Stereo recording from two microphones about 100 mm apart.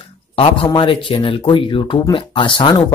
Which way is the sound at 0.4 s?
65° left (ahead or behind).